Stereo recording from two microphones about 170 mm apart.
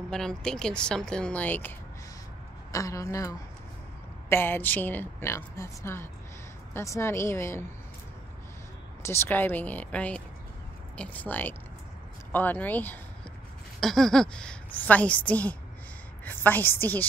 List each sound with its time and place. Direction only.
0.1 s a woman's voice: 5° left (ahead or behind)
2.7 s a woman's voice: 20° left (ahead or behind)
9.0 s a woman's voice: 15° left (ahead or behind)